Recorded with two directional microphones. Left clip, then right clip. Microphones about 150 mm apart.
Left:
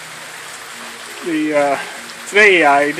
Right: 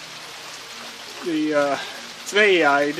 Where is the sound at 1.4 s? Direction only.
15° right (ahead or behind).